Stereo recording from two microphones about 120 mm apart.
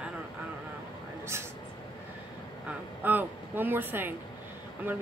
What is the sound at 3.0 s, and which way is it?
Speech, 15° right (ahead or behind).